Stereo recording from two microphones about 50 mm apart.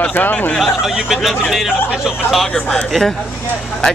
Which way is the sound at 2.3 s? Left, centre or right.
Centre.